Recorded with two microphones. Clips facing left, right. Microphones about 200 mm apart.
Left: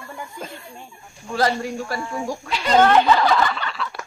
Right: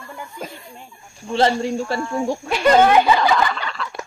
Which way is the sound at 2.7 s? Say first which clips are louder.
Right 1 dB; 10° right (ahead or behind).